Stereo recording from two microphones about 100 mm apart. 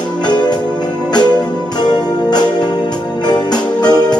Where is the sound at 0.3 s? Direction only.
45° left (ahead or behind).